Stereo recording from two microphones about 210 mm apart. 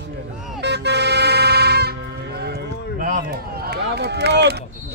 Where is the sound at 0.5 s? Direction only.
55° right (ahead or behind).